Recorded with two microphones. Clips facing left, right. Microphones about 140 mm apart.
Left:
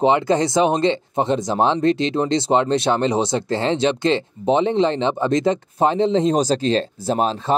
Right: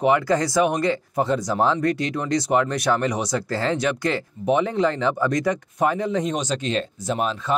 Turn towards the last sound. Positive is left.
turn(degrees=30)  # may be behind; listen again after turning